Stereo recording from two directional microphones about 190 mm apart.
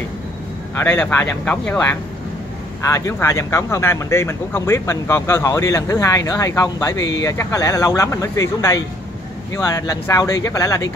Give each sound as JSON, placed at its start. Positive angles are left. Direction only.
{"t": 0.7, "sound": "speech", "side_deg": 5}